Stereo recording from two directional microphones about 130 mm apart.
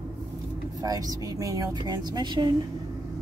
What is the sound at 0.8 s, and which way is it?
Speech, 30° right (ahead or behind).